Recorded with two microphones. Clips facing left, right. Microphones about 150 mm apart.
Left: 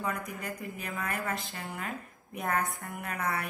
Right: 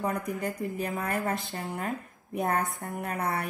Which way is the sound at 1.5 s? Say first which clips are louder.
Right 5 dB; 45° right (ahead or behind).